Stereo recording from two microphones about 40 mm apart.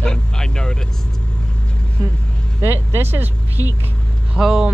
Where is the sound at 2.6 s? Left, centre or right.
Right.